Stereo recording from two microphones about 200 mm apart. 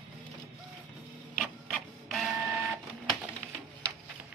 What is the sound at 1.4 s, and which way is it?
Printer, centre (ahead or behind).